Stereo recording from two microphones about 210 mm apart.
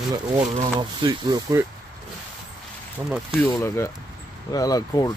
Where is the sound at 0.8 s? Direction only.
20° right (ahead or behind).